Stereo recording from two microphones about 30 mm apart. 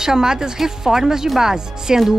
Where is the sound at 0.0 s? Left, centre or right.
Right.